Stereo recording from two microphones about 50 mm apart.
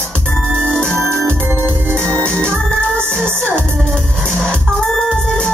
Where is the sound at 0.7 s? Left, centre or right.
Centre.